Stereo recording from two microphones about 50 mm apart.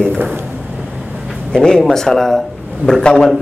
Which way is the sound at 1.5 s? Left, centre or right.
Centre.